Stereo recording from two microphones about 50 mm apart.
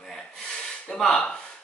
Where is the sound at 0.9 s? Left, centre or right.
Centre.